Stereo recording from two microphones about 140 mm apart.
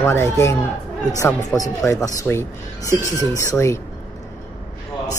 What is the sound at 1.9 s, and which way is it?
Speech, 20° left (ahead or behind).